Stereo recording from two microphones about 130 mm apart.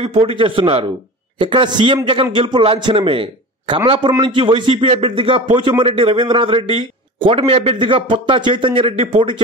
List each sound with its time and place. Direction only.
0.0 s speech: 50° right (ahead or behind)